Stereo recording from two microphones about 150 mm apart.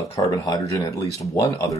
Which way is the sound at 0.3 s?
25° left (ahead or behind).